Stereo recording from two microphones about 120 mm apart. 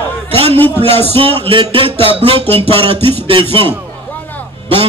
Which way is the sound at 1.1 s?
50° right (ahead or behind).